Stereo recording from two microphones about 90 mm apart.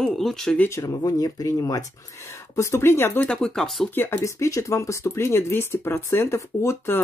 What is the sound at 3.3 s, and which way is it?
Speech, 5° left (ahead or behind).